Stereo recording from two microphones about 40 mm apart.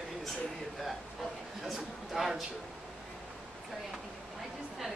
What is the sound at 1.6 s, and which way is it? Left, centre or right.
Speech, centre.